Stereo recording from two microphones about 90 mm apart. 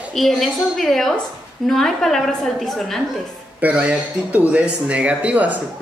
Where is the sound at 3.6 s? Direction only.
15° right (ahead or behind).